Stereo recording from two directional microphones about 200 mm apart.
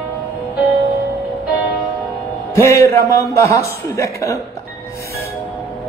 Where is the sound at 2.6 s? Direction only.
15° left (ahead or behind).